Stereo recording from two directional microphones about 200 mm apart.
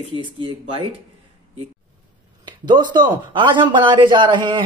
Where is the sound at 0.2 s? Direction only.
25° right (ahead or behind).